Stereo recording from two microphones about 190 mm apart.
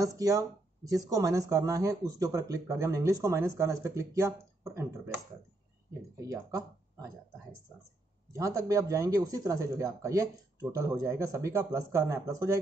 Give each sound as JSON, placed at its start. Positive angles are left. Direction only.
{"t": 0.0, "sound": "speech", "side_deg": -20}
{"t": 8.3, "sound": "speech", "side_deg": -15}